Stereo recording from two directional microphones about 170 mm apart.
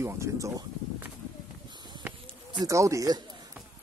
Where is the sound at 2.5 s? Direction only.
20° right (ahead or behind).